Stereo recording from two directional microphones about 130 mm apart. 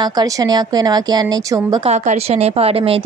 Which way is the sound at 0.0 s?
30° right (ahead or behind).